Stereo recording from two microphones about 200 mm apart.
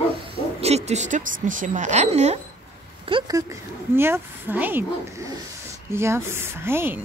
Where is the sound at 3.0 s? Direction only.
20° right (ahead or behind).